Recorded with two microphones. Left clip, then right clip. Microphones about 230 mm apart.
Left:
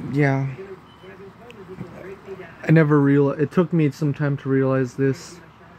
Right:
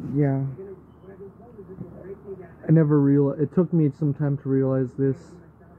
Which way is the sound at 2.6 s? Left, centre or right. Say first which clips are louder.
Left 3 dB; left.